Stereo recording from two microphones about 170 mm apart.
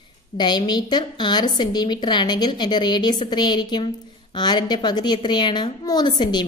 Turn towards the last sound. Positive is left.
turn(degrees=25)  # may be behind; listen again after turning